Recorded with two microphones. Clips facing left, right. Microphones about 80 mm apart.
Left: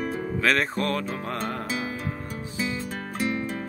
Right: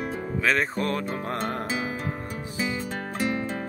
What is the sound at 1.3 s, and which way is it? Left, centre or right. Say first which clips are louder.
Music: right 1 dB; right.